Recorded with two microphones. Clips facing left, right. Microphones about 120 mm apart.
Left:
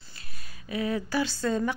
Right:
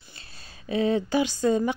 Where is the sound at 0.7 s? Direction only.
25° right (ahead or behind).